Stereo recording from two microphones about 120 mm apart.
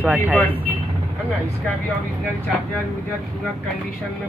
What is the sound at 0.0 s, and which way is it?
Speech, 10° right (ahead or behind).